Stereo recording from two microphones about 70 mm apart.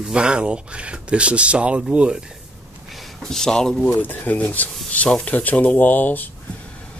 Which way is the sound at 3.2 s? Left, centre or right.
Centre.